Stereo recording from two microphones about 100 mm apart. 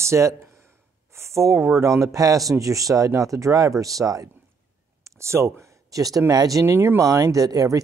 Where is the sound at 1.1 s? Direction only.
30° right (ahead or behind).